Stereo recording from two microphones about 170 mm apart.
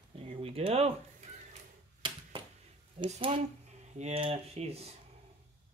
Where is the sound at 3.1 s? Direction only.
35° right (ahead or behind).